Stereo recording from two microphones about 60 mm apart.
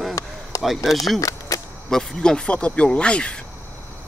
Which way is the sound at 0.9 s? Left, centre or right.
Centre.